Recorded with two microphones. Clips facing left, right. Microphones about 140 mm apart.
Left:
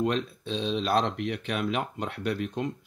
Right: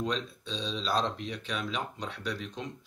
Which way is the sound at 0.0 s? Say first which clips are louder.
Left 6 dB; 60° left (ahead or behind).